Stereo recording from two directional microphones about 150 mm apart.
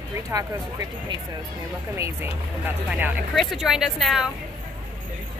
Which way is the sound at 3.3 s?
Centre (ahead or behind).